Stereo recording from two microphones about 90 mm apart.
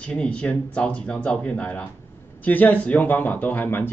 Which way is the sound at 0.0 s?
10° left (ahead or behind).